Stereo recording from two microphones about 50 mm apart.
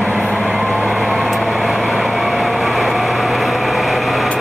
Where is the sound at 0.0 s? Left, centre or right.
Centre.